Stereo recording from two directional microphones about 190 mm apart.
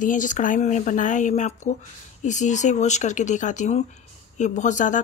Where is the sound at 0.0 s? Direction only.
45° left (ahead or behind).